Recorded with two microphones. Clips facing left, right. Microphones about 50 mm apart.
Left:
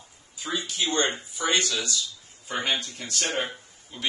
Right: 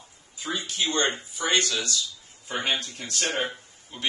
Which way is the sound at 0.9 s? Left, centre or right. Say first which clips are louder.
Even; centre.